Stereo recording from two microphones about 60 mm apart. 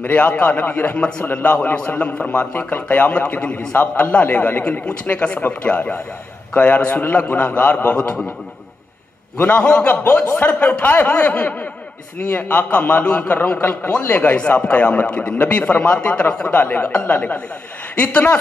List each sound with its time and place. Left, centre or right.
0.0 s speech: left
3.5 s speech: left
9.4 s speech: left
17.9 s speech: centre